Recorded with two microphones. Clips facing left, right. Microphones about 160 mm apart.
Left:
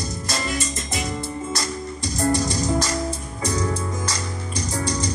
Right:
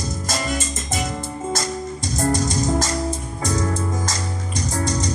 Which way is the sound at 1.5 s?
45° right (ahead or behind).